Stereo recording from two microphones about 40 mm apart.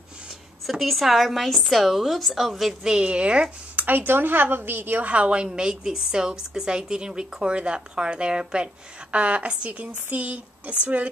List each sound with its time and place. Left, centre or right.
0.7 s a woman's voice: centre
2.8 s a woman's voice: centre
3.7 s a woman's voice: right
5.0 s a woman's voice: right; by 8.6 s centre
9.1 s a sound: right